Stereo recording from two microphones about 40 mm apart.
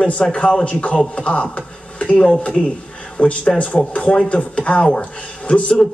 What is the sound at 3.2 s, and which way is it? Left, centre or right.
A man's voice, left.